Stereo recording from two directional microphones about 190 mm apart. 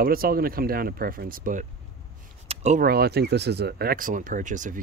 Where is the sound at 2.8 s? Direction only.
55° right (ahead or behind).